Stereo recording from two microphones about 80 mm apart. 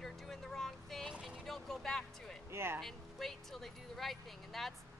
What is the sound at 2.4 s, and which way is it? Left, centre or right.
Speech, right.